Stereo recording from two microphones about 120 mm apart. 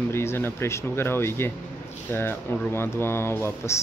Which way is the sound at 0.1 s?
20° left (ahead or behind).